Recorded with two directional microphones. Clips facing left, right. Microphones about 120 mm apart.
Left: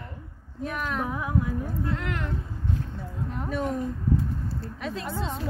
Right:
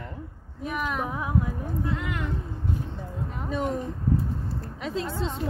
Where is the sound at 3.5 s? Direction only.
25° right (ahead or behind).